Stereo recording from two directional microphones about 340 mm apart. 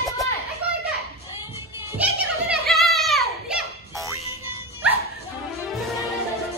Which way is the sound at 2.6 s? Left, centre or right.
Centre.